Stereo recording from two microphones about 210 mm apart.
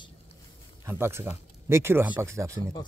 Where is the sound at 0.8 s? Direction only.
10° right (ahead or behind).